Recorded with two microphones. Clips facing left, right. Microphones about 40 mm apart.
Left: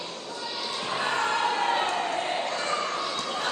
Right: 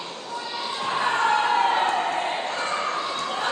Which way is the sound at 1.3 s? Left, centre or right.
Right.